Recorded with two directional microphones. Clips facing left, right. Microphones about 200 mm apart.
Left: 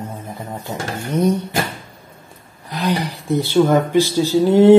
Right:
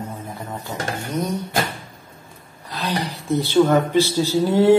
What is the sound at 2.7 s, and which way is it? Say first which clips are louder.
Speech: left 4 dB; 15° left (ahead or behind).